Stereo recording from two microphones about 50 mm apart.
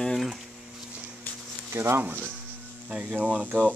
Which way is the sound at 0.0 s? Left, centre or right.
Centre.